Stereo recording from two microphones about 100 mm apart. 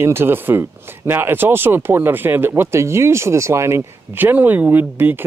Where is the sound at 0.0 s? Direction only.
25° right (ahead or behind).